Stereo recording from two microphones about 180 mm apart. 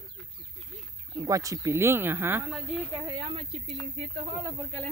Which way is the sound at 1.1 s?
20° right (ahead or behind).